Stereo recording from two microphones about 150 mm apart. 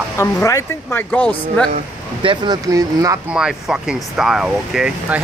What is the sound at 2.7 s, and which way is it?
Speech, 20° right (ahead or behind).